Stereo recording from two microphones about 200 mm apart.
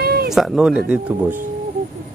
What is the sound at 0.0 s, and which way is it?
Cat, 50° right (ahead or behind).